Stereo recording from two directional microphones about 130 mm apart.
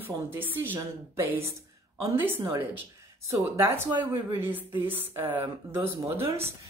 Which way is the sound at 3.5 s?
20° right (ahead or behind).